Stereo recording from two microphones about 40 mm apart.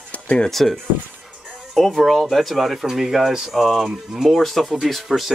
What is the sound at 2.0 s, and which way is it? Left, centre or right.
Speech, centre.